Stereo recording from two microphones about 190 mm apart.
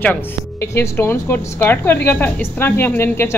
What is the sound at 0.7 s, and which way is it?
Speech, 10° left (ahead or behind).